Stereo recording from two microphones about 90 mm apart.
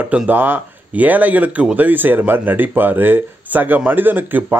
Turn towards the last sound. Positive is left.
turn(degrees=-20)  # may be behind; listen again after turning